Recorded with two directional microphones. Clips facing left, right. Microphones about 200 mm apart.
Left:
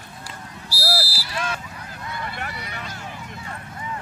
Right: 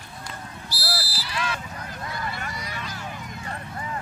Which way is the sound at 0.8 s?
35° left (ahead or behind).